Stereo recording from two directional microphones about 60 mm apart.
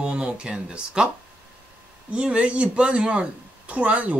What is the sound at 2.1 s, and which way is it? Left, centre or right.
Speech, centre.